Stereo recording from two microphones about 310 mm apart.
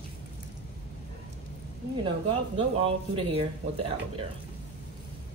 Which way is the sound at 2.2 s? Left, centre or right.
Centre.